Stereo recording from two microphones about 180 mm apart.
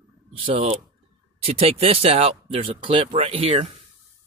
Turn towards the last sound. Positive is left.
turn(degrees=-35)  # may be behind; listen again after turning